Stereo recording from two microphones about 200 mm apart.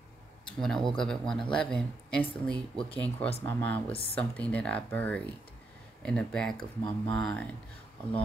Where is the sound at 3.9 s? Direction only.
30° left (ahead or behind).